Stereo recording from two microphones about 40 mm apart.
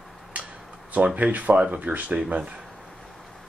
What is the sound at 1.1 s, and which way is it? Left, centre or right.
Speech, right.